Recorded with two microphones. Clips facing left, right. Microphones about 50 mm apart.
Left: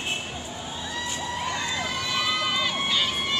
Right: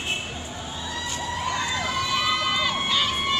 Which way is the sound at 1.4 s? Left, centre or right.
Centre.